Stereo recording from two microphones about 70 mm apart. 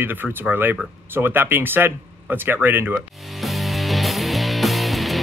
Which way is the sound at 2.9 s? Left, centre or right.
Centre.